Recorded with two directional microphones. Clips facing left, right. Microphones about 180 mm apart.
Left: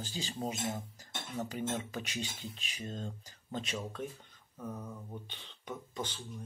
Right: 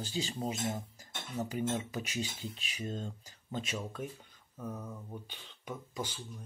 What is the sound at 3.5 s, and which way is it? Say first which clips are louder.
Speech: even; 10° right (ahead or behind).